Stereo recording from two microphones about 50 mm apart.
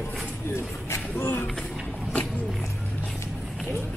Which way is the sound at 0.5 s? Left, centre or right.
Left.